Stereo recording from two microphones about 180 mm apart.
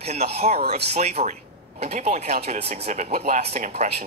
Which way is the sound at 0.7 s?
40° right (ahead or behind).